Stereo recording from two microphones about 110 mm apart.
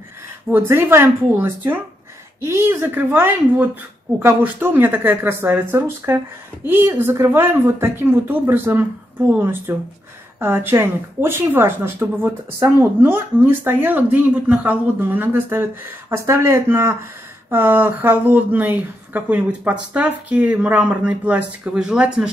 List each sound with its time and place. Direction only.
0.5 s speech: 20° right (ahead or behind)